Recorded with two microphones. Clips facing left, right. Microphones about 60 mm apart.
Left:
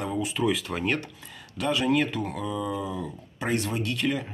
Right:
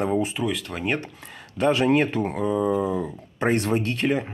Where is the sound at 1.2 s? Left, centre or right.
Right.